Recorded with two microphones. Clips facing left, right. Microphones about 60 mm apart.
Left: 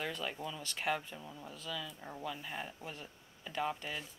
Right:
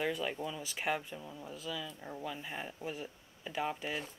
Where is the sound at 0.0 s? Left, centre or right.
Centre.